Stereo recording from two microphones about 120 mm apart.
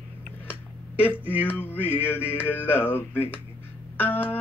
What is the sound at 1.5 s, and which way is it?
Speech, 15° left (ahead or behind).